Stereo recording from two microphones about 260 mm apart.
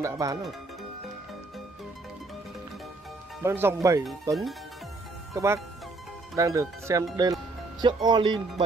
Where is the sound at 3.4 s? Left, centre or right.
Centre.